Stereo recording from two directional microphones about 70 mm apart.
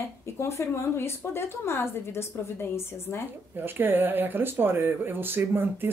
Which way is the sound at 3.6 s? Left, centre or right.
Right.